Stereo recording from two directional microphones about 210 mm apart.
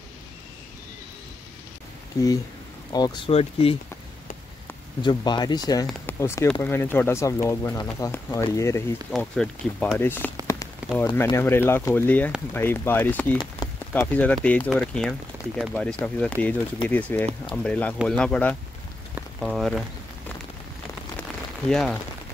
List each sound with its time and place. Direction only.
2.9 s speech: 20° left (ahead or behind)
5.0 s speech: 20° left (ahead or behind)
9.1 s speech: 5° left (ahead or behind)
10.4 s rain on surface: 15° left (ahead or behind)
11.1 s speech: 15° left (ahead or behind)
13.4 s rain on surface: 20° left (ahead or behind)
14.1 s speech: 5° left (ahead or behind)
21.6 s speech: centre (ahead or behind)